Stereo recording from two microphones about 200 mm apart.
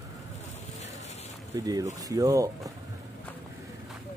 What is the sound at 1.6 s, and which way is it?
Speech, 20° right (ahead or behind).